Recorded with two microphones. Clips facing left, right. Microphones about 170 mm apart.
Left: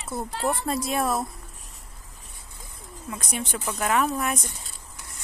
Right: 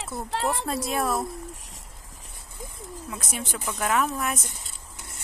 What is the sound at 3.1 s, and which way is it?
Speech, centre (ahead or behind).